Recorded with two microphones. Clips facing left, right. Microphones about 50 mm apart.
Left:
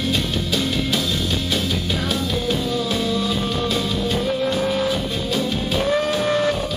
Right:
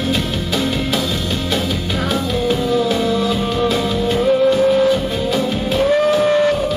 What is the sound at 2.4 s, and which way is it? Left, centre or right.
Music, centre.